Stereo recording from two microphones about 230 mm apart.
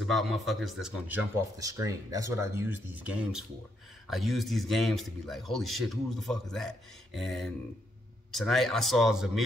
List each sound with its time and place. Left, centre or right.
0.0 s a man's voice: centre